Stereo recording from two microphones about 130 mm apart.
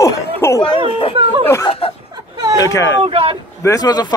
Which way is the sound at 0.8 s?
45° left (ahead or behind).